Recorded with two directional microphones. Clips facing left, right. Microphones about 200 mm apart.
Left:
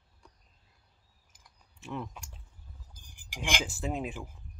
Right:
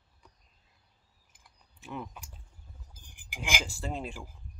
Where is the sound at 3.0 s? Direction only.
55° right (ahead or behind).